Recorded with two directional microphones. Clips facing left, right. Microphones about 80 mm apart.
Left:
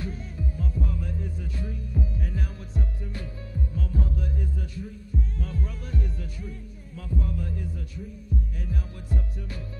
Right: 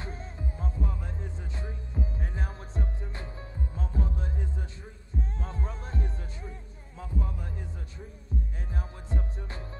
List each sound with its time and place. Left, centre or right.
0.0 s music: right